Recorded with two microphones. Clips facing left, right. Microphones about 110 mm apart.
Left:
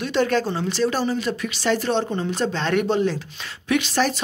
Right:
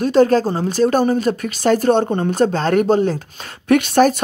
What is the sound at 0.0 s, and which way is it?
Speech, 40° right (ahead or behind).